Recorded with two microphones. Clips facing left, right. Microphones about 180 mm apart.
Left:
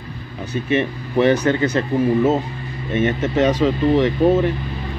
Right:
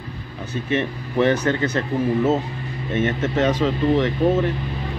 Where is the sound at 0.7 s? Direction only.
15° left (ahead or behind).